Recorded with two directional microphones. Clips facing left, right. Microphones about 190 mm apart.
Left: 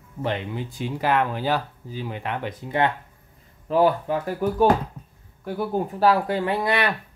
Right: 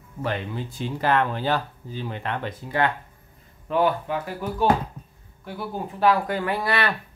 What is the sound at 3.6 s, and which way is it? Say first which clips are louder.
Speech: left 3 dB; 35° left (ahead or behind).